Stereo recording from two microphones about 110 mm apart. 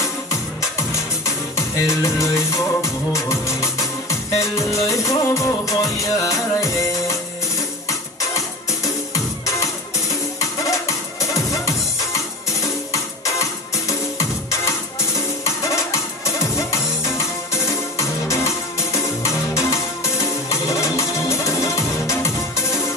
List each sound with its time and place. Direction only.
0.0 s music: 25° left (ahead or behind)
1.9 s music: 25° left (ahead or behind)
8.2 s music: 30° left (ahead or behind)
12.9 s music: 30° left (ahead or behind)